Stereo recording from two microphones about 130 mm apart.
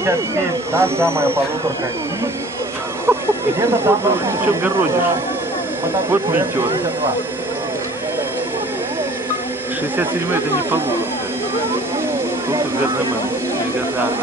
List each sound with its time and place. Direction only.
0.7 s speech: 20° right (ahead or behind)
3.1 s speech: 20° right (ahead or behind)
6.0 s speech: 15° right (ahead or behind)
9.9 s speech: 15° right (ahead or behind)